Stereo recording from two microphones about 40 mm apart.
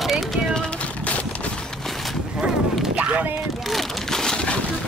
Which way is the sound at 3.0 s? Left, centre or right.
Right.